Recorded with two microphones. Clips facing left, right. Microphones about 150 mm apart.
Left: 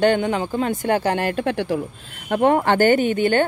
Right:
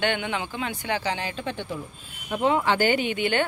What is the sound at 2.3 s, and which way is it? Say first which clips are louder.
Speech: left 6 dB; 55° left (ahead or behind).